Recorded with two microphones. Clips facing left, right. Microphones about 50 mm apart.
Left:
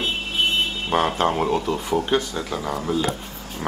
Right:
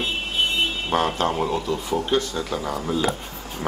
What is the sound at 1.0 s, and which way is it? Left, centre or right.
Speech, left.